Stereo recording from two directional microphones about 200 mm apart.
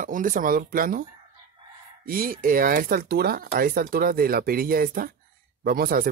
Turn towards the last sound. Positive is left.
turn(degrees=-45)  # may be behind; listen again after turning